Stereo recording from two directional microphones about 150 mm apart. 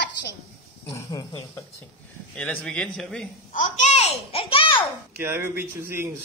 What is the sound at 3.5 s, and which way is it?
Babbling, 50° left (ahead or behind).